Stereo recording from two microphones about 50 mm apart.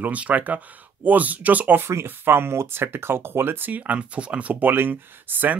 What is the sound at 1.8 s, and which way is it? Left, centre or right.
Speech, right.